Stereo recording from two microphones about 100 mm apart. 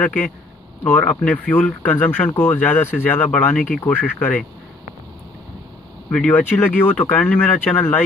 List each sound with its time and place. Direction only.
0.0 s speech: 15° left (ahead or behind)
6.0 s speech: 15° left (ahead or behind)